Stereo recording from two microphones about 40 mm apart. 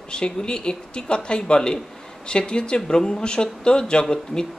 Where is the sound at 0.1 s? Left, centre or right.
Left.